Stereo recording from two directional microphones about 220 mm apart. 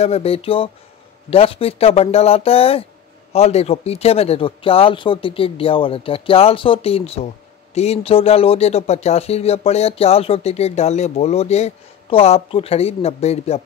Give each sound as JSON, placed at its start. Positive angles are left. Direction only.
{"t": 0.0, "sound": "speech", "side_deg": 25}